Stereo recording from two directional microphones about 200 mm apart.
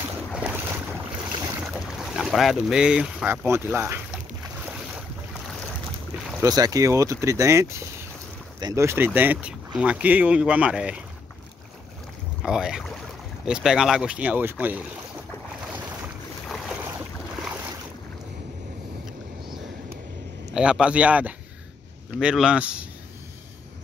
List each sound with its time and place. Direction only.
0.3 s boat: 5° right (ahead or behind)
1.7 s speech: centre (ahead or behind)
6.4 s speech: 20° right (ahead or behind)
12.4 s speech: 5° right (ahead or behind)
16.4 s boat: centre (ahead or behind)
20.5 s speech: 5° right (ahead or behind)